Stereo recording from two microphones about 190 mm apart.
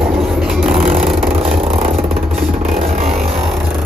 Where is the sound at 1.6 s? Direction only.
30° right (ahead or behind).